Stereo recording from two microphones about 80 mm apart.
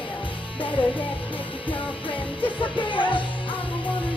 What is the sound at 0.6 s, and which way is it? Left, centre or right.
Music, left.